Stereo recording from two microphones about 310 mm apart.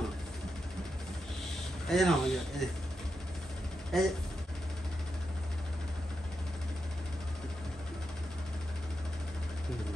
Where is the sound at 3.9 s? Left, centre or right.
Centre.